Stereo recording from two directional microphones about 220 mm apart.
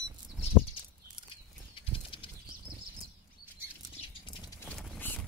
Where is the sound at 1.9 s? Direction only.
25° left (ahead or behind).